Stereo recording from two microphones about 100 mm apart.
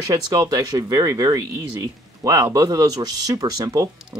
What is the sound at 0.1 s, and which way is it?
Speech, 35° right (ahead or behind).